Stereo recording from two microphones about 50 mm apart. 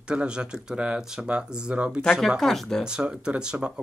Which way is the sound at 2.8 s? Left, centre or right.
Centre.